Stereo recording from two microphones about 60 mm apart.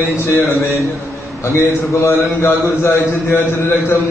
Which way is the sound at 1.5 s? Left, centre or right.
Left.